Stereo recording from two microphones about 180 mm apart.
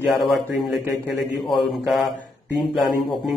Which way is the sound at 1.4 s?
Centre (ahead or behind).